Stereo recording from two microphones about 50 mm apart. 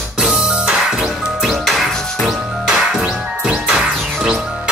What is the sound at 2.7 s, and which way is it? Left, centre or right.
Music, centre.